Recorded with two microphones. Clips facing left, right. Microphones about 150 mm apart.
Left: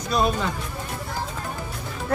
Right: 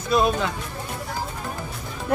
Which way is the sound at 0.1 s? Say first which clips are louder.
Right 2 dB; centre (ahead or behind).